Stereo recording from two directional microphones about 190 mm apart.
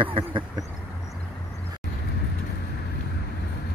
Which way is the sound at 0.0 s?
25° right (ahead or behind).